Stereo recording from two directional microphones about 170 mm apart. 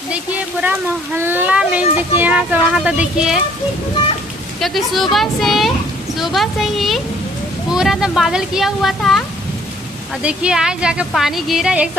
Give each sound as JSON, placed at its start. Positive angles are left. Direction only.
{"t": 0.1, "sound": "a child's voice", "side_deg": -10}
{"t": 4.6, "sound": "a woman's voice", "side_deg": 0}
{"t": 10.2, "sound": "a woman's voice", "side_deg": -5}